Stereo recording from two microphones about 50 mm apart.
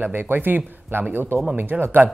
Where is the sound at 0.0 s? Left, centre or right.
Right.